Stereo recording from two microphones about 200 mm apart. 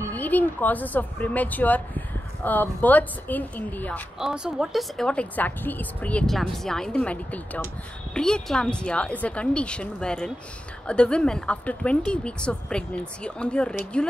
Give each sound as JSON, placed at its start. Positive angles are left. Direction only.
{"t": 0.1, "sound": "speech", "side_deg": 10}
{"t": 4.2, "sound": "speech", "side_deg": -5}